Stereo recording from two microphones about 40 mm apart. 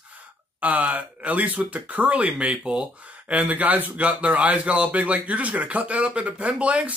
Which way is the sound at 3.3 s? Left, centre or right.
Right.